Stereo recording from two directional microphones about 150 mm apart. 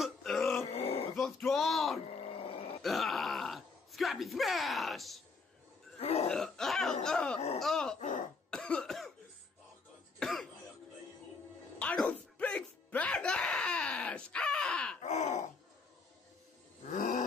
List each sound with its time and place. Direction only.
0.0 s grunt: centre (ahead or behind)
0.7 s a sound: 45° left (ahead or behind)
1.1 s speech: 5° left (ahead or behind)
2.3 s roar: 40° left (ahead or behind)
2.8 s speech: centre (ahead or behind)
5.9 s throat clearing: 45° left (ahead or behind)
6.3 s speech: 5° left (ahead or behind)
8.5 s cough: 5° left (ahead or behind)
10.1 s cough: centre (ahead or behind)
11.8 s music: 10° left (ahead or behind)
15.0 s groan: 50° left (ahead or behind)
16.8 s wild animals: 55° left (ahead or behind)